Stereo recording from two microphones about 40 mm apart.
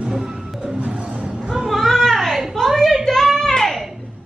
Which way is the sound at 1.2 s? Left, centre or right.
Centre.